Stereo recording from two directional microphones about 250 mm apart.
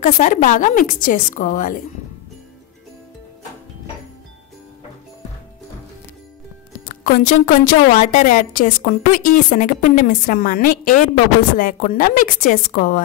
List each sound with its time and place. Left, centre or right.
0.0 s a woman's voice: left
6.9 s a woman's voice: left